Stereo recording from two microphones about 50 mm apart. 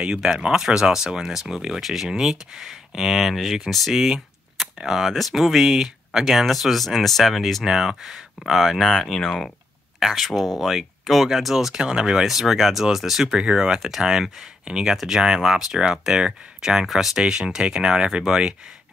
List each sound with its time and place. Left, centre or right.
0.0 s speech: centre
11.8 s speech: centre
12.3 s speech: centre
13.4 s speech: centre
13.7 s speech: centre